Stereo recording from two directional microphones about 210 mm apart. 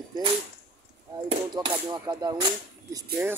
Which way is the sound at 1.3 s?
20° right (ahead or behind).